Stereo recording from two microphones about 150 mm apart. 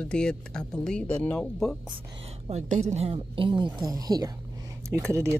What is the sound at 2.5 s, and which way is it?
Speech, 50° right (ahead or behind).